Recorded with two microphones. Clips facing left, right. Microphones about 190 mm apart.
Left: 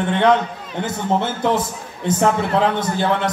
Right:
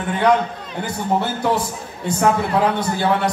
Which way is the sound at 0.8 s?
20° left (ahead or behind).